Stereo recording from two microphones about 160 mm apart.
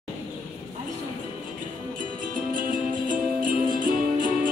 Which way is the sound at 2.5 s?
60° right (ahead or behind).